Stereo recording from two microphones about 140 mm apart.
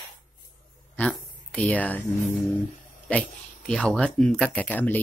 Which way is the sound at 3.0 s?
5° left (ahead or behind).